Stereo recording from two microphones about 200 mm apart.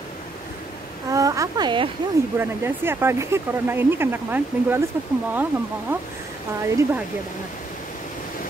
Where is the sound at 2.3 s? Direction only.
10° right (ahead or behind).